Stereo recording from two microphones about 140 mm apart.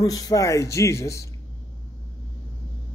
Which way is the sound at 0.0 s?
25° left (ahead or behind).